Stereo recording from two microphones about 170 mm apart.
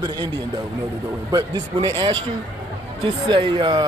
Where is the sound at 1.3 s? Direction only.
25° right (ahead or behind).